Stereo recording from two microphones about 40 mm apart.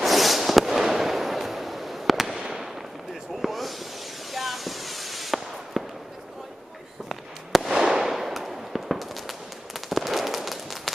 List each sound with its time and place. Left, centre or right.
0.0 s fireworks: centre
3.3 s a sound: centre
4.3 s fireworks: centre
7.1 s fireworks: centre
8.0 s firecracker: centre